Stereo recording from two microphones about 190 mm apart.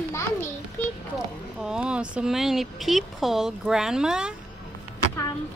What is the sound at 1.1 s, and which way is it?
Speech, 5° right (ahead or behind).